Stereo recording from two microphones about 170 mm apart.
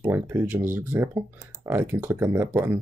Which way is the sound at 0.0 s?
15° right (ahead or behind).